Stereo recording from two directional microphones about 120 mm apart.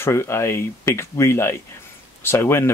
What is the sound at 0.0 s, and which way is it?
Speech, 20° left (ahead or behind).